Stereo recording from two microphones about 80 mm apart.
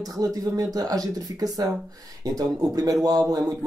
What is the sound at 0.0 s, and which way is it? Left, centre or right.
Speech, right.